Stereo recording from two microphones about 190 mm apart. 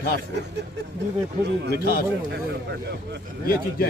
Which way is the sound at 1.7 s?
50° left (ahead or behind).